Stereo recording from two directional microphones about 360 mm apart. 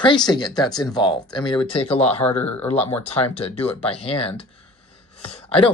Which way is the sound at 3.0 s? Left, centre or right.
Centre.